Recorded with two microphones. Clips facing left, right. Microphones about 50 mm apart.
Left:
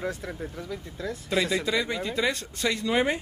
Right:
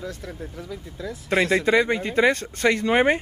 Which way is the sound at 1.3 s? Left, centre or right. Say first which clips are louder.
Right 7 dB; right.